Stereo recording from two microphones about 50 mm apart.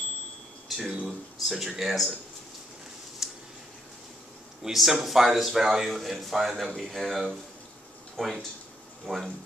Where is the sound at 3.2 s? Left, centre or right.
Centre.